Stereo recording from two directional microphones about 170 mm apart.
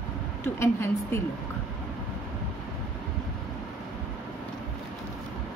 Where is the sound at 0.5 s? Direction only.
15° left (ahead or behind).